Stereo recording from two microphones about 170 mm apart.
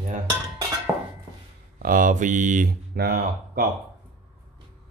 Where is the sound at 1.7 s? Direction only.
55° right (ahead or behind).